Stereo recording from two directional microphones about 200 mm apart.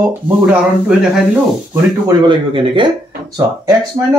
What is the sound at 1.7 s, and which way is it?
Speech, 20° right (ahead or behind).